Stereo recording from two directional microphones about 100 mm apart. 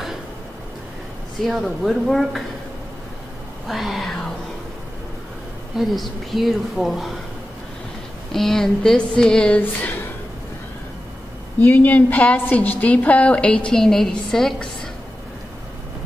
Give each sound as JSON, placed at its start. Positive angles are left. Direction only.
{"t": 1.4, "sound": "speech", "side_deg": 0}
{"t": 3.6, "sound": "speech", "side_deg": 0}
{"t": 5.8, "sound": "speech", "side_deg": 0}
{"t": 8.3, "sound": "speech", "side_deg": 5}
{"t": 11.6, "sound": "a woman's voice", "side_deg": 20}